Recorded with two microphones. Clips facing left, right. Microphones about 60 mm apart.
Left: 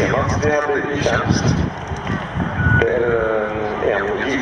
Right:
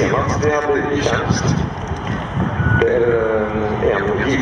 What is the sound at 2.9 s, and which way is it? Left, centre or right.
A man's voice, centre.